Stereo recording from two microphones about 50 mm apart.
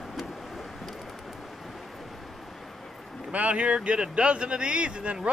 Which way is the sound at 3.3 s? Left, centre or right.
Right.